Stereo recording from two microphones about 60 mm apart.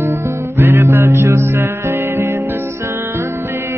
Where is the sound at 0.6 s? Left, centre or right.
Right.